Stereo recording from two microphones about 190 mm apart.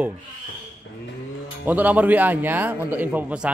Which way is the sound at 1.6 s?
10° right (ahead or behind).